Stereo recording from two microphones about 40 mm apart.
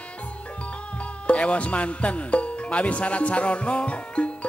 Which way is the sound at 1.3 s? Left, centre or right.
Left.